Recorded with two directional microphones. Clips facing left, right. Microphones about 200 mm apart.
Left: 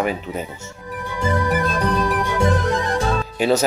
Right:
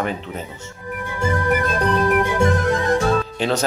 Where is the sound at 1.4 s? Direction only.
50° right (ahead or behind).